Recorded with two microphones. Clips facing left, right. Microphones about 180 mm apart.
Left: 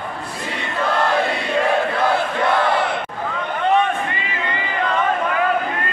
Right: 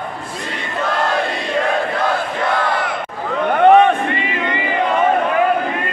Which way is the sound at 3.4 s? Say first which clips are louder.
Right 8 dB; 60° right (ahead or behind).